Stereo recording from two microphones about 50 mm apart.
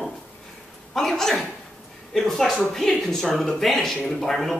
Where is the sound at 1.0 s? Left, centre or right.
Centre.